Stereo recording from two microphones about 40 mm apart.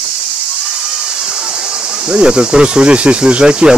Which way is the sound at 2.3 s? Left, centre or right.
Right.